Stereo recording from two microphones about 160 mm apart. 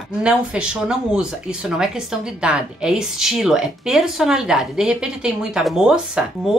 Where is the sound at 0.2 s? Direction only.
5° right (ahead or behind).